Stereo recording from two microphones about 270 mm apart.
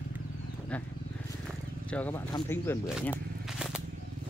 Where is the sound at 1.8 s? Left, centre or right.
Centre.